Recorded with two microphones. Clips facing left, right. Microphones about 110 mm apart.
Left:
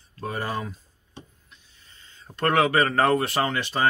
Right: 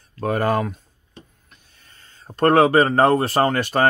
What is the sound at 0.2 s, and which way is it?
Speech, 60° right (ahead or behind).